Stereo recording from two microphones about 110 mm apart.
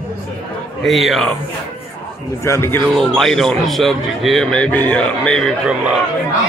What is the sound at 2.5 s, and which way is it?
Speech, 25° left (ahead or behind).